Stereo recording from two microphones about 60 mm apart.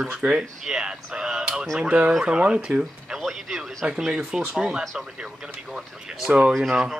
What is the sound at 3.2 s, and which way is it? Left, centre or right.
Speech, centre.